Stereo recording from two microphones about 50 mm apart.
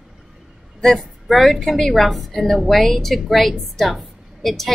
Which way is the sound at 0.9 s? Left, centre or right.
Centre.